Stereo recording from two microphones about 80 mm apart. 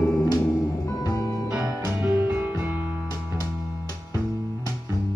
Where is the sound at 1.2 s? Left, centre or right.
Left.